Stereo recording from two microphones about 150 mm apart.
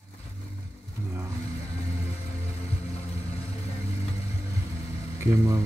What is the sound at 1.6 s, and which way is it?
Music, 45° left (ahead or behind).